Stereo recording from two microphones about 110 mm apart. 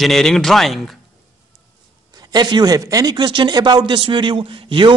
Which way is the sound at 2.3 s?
40° right (ahead or behind).